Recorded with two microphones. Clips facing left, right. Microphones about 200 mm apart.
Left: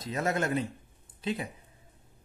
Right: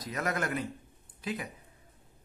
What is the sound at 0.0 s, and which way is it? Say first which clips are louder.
Speech: left 3 dB; 25° left (ahead or behind).